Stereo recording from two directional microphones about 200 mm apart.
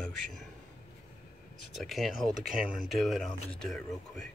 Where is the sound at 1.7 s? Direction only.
Centre (ahead or behind).